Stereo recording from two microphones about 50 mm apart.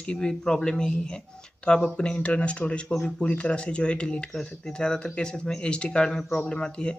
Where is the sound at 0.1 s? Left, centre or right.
Centre.